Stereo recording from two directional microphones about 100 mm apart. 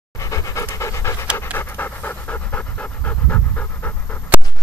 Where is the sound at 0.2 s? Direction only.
35° left (ahead or behind); by 4.2 s 20° left (ahead or behind).